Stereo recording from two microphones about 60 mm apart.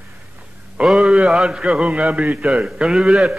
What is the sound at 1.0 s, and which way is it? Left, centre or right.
A man's voice, centre.